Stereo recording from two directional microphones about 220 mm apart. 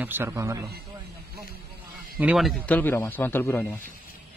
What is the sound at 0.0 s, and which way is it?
Speech, 10° right (ahead or behind).